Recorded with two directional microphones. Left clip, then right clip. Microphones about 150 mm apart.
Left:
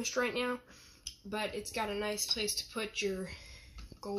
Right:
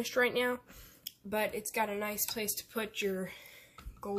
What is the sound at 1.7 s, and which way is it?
A woman's voice, 20° right (ahead or behind).